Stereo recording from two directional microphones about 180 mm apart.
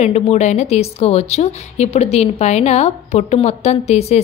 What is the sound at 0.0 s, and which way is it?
A woman's voice, 40° left (ahead or behind).